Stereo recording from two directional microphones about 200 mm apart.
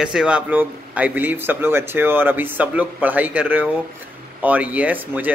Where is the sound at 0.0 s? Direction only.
5° right (ahead or behind).